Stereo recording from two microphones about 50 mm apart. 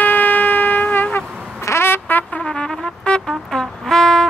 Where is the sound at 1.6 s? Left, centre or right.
Left.